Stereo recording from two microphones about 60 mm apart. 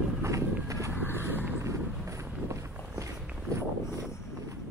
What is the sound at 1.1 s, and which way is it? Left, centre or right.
Vehicle, right.